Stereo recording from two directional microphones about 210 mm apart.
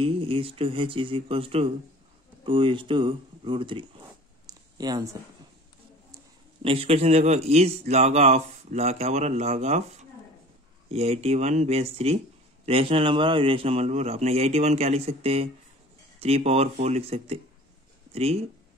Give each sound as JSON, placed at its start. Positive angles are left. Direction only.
{"t": 0.0, "sound": "a man's voice", "side_deg": -25}
{"t": 6.6, "sound": "speech", "side_deg": -25}
{"t": 10.9, "sound": "a man's voice", "side_deg": -30}